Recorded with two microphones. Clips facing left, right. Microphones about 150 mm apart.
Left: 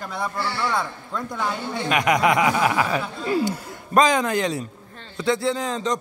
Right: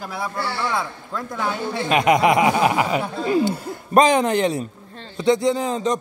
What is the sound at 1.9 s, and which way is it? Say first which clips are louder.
Speech: right 3 dB; 25° right (ahead or behind).